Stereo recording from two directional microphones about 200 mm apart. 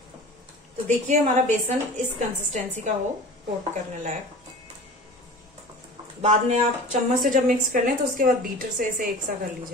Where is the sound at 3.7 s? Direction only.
35° right (ahead or behind).